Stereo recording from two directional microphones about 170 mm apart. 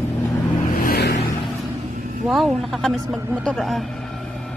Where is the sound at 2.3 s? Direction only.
Centre (ahead or behind).